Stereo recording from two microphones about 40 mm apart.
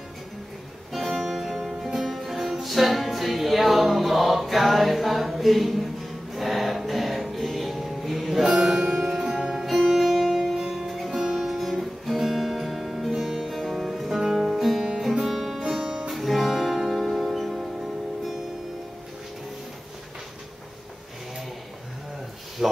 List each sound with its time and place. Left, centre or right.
0.9 s music: centre
13.6 s music: centre
15.8 s music: right
16.1 s music: centre
22.6 s a sound: centre